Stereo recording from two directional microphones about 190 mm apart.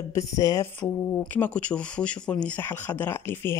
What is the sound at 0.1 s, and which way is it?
Speech, 15° left (ahead or behind).